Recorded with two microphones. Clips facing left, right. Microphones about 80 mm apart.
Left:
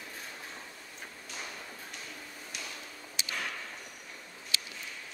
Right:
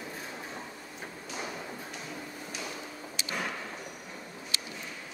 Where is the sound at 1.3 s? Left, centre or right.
Centre.